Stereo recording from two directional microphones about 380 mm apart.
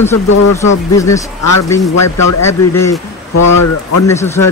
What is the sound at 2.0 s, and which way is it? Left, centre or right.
A man's voice, left.